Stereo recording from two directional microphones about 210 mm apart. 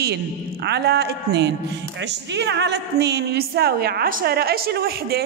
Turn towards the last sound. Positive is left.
turn(degrees=-50)  # may be behind; listen again after turning